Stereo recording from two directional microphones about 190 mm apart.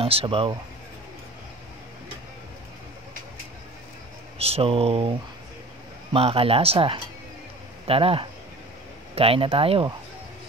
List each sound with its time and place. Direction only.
0.0 s speech: 30° right (ahead or behind)
4.4 s speech: 30° right (ahead or behind)
6.1 s speech: 30° right (ahead or behind)